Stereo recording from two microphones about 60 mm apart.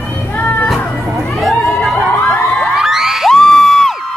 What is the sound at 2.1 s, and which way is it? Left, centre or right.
Crowd, left.